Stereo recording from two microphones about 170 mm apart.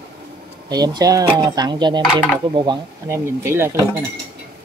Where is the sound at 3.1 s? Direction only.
15° right (ahead or behind).